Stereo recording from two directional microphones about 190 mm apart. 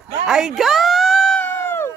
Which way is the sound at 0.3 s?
5° right (ahead or behind).